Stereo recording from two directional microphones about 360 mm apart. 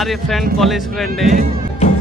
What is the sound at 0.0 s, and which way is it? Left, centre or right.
Speech, centre.